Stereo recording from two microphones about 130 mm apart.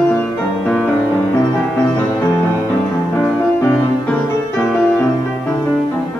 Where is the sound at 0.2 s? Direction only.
5° left (ahead or behind).